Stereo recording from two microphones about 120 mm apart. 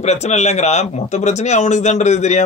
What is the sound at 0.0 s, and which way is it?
Speech, 70° left (ahead or behind).